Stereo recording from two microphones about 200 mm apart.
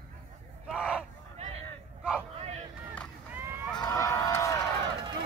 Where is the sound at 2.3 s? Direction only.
30° right (ahead or behind).